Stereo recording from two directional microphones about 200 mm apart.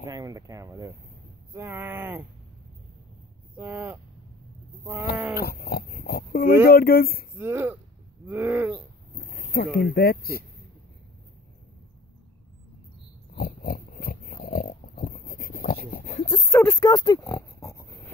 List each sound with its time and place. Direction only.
0.0 s speech: 15° right (ahead or behind)
3.5 s speech: 10° right (ahead or behind)
5.3 s speech: 50° left (ahead or behind)
7.3 s speech: 10° right (ahead or behind)
9.1 s a sound: 45° left (ahead or behind)
9.9 s speech: 50° left (ahead or behind)
13.3 s pig: 45° left (ahead or behind)
16.3 s speech: 15° left (ahead or behind)
16.8 s oink: 20° left (ahead or behind)